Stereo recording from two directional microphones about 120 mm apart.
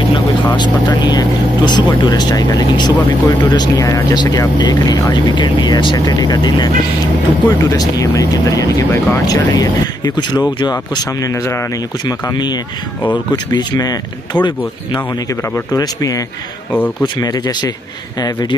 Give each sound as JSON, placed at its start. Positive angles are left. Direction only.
{"t": 0.6, "sound": "speech", "side_deg": 35}
{"t": 15.7, "sound": "speech", "side_deg": 30}